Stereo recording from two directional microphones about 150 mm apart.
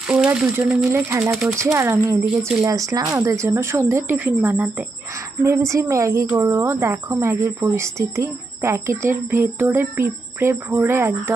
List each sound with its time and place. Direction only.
0.0 s speech: 5° right (ahead or behind)
1.3 s speech: centre (ahead or behind)
1.6 s speech: 15° right (ahead or behind)
2.2 s speech: centre (ahead or behind)
2.6 s speech: 20° right (ahead or behind)